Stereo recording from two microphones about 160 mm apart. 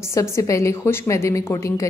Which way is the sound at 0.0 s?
20° left (ahead or behind).